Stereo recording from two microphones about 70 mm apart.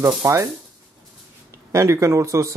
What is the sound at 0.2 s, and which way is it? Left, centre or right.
Speech, right.